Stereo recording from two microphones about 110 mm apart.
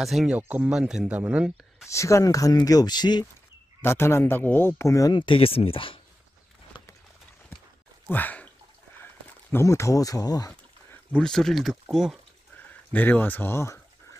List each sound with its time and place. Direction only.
0.0 s speech: centre (ahead or behind)
0.4 s speech: 15° right (ahead or behind)
1.9 s speech: 25° left (ahead or behind)
3.8 s speech: 25° left (ahead or behind)
5.2 s speech: 55° left (ahead or behind)
6.7 s a sound: 50° left (ahead or behind)
8.1 s speech: 15° left (ahead or behind)
9.5 s speech: 25° left (ahead or behind)
10.5 s a sound: 10° left (ahead or behind)
11.9 s speech: 5° right (ahead or behind)
12.9 s speech: 15° left (ahead or behind)